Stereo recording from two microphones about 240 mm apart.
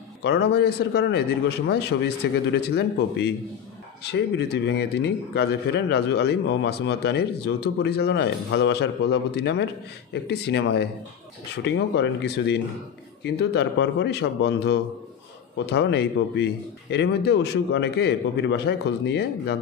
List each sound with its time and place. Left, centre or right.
0.2 s a man's voice: left